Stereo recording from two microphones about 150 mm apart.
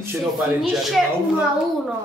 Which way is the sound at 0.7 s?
Centre (ahead or behind).